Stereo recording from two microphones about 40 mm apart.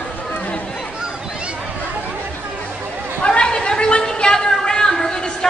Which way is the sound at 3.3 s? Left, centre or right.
Left.